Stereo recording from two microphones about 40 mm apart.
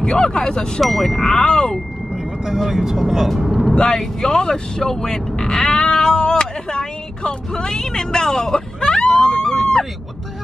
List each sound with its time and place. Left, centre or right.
0.0 s speech: centre
0.7 s speech: centre
2.4 s speech: centre
3.7 s speech: centre